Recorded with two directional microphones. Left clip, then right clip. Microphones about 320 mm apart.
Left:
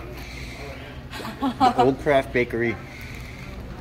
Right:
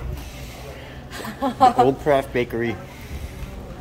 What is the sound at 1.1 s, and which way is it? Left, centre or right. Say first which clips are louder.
Speech: right 4 dB; right.